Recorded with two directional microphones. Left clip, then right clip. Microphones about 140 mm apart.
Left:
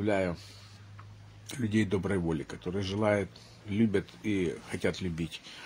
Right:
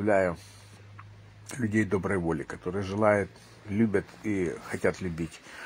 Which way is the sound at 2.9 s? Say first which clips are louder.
Right 5 dB; 35° left (ahead or behind).